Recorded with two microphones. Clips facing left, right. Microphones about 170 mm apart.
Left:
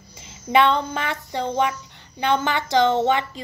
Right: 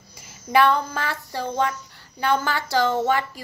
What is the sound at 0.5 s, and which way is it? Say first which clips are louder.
Child singing: left 1 dB; 20° left (ahead or behind).